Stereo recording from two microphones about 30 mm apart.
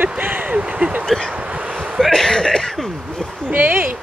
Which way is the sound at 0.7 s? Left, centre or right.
Right.